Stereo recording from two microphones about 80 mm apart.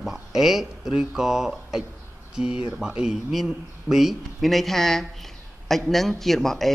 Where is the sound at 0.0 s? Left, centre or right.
Centre.